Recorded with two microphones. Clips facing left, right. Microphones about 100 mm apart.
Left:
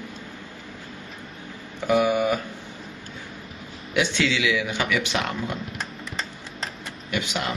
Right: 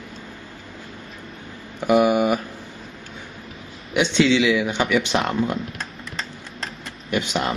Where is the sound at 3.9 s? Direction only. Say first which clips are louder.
Right 6 dB; 25° right (ahead or behind).